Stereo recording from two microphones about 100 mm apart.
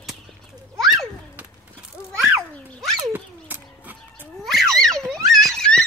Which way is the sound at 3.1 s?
20° right (ahead or behind).